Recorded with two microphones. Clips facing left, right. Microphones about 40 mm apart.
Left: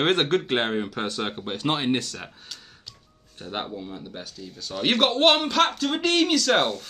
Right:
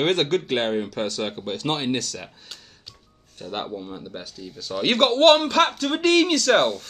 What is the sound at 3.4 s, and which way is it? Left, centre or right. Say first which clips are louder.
Speech: right 2 dB; centre.